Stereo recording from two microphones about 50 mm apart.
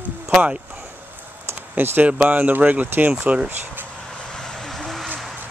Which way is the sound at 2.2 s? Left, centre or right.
Right.